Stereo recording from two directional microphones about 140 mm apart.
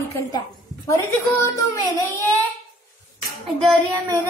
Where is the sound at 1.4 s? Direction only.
20° left (ahead or behind).